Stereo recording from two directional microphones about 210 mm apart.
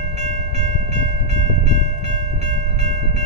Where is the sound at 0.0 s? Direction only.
35° right (ahead or behind).